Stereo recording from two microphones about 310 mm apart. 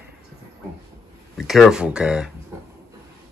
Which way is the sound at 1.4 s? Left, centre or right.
Centre.